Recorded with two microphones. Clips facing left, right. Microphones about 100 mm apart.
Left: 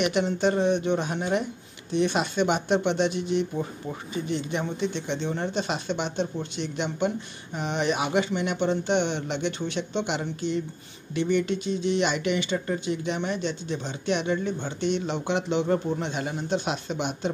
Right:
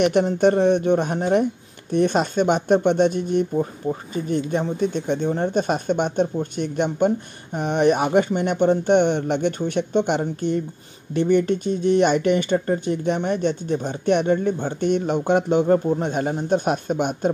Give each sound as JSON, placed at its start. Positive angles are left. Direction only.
{"t": 0.0, "sound": "speech", "side_deg": -50}